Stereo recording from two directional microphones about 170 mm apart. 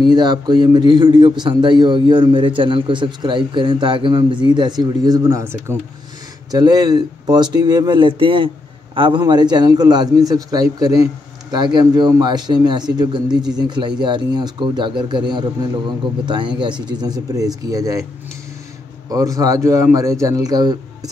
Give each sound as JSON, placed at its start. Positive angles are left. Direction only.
{"t": 0.0, "sound": "a man's voice", "side_deg": -25}
{"t": 19.0, "sound": "a man's voice", "side_deg": -20}